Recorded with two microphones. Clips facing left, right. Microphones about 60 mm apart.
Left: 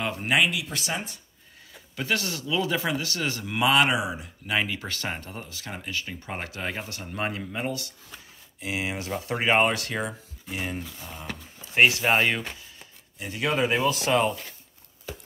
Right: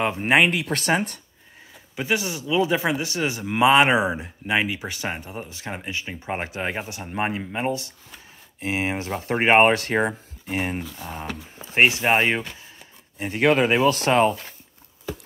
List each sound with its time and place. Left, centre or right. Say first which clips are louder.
0.0 s speech: right 5 dB; right
2.0 s speech: right 3 dB; centre
4.6 s speech: right 3 dB; centre; by 10.8 s right
10.8 s speech: right 6 dB; right
11.5 s speech: right 2 dB; right
13.2 s speech: right 8 dB; right
13.5 s speech: right 5 dB; right